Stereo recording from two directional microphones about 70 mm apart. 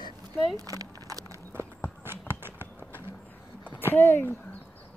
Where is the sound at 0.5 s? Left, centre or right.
Right.